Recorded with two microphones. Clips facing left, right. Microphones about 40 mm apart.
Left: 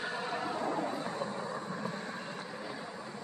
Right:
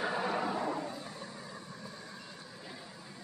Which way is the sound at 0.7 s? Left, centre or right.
Left.